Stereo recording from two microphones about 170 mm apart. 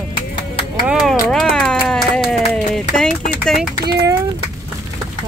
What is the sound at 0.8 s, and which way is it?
Speech, 5° right (ahead or behind).